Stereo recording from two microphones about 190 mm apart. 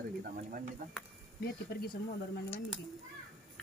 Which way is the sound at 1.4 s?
55° left (ahead or behind).